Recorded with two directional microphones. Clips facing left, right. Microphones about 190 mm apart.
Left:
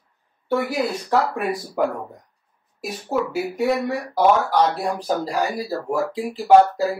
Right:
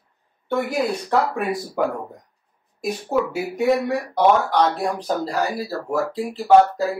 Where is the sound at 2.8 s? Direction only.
Centre (ahead or behind).